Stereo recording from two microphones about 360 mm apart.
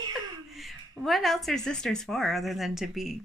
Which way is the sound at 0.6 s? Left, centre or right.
Centre.